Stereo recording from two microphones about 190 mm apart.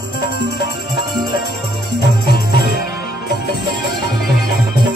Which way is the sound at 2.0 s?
60° left (ahead or behind).